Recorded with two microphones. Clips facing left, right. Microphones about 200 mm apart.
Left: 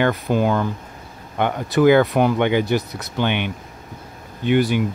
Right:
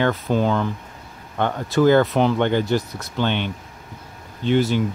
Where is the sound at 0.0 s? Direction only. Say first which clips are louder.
Left 1 dB; 10° left (ahead or behind).